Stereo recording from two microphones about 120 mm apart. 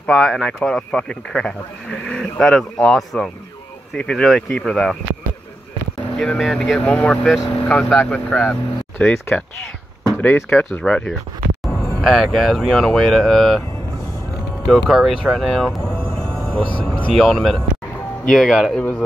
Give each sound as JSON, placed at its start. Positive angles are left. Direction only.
{"t": 0.0, "sound": "speech", "side_deg": 5}
{"t": 6.1, "sound": "speech", "side_deg": 5}
{"t": 10.8, "sound": "speech", "side_deg": 5}
{"t": 11.7, "sound": "a sound", "side_deg": 20}
{"t": 12.0, "sound": "speech", "side_deg": 0}
{"t": 14.7, "sound": "speech", "side_deg": 0}
{"t": 16.4, "sound": "speech", "side_deg": 10}
{"t": 18.8, "sound": "speech", "side_deg": 10}